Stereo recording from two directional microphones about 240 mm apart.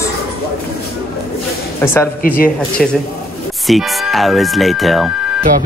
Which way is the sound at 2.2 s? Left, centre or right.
Left.